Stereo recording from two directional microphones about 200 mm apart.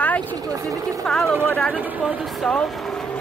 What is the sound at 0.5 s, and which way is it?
Speech, 15° right (ahead or behind).